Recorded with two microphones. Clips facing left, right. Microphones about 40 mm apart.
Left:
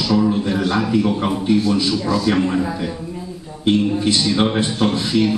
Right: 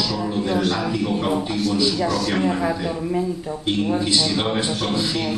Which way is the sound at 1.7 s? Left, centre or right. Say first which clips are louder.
Left 2 dB; left.